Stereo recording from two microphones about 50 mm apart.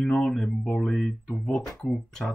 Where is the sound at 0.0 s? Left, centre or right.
Centre.